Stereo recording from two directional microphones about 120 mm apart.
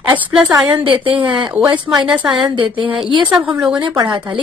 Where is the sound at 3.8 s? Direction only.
35° right (ahead or behind).